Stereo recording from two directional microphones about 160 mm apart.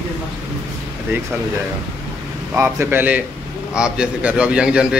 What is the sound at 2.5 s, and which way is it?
A man's voice, 15° right (ahead or behind).